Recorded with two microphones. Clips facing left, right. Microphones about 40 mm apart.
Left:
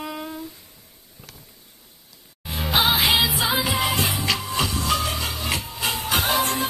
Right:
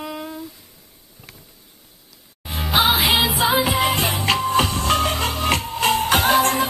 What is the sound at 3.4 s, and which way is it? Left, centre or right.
Music, right.